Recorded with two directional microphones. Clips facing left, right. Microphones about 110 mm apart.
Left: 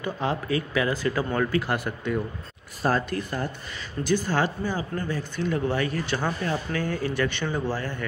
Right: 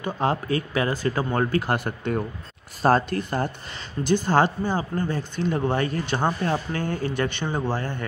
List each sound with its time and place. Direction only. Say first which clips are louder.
0.0 s speech: right 3 dB; 40° right (ahead or behind)
7.2 s speech: right 1 dB; 20° right (ahead or behind)